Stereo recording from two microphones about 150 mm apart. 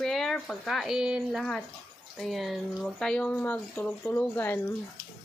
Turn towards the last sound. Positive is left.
turn(degrees=10)  # may be behind; listen again after turning